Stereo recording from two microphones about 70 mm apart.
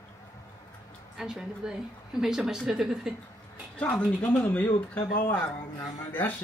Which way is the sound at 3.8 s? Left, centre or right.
Left.